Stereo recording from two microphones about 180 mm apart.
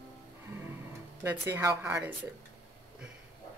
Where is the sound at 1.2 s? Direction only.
15° right (ahead or behind).